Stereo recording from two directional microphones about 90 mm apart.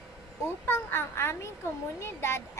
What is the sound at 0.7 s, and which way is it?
A child's voice, 25° left (ahead or behind).